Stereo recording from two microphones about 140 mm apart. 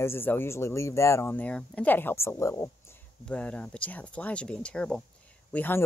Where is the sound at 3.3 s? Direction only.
10° left (ahead or behind).